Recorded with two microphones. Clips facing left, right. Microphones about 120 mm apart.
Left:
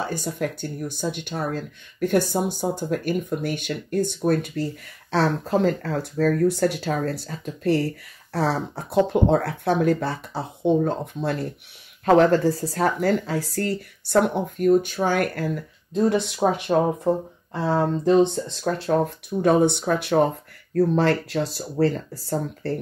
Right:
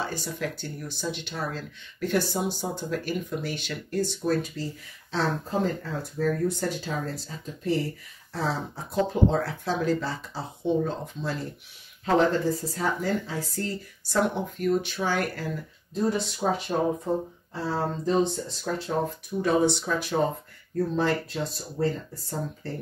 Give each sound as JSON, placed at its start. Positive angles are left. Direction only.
{"t": 0.0, "sound": "speech", "side_deg": 50}
{"t": 16.1, "sound": "speech", "side_deg": 70}
{"t": 19.4, "sound": "speech", "side_deg": 55}